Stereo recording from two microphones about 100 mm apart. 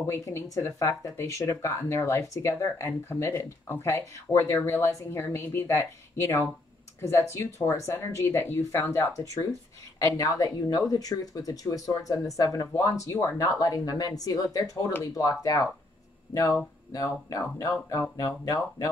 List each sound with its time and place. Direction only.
0.0 s speech: 30° left (ahead or behind)
16.9 s speech: 35° left (ahead or behind)